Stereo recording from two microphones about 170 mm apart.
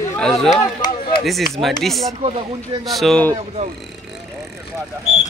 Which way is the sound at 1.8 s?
Centre (ahead or behind).